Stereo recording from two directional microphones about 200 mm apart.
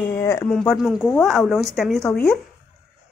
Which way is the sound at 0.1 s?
10° left (ahead or behind).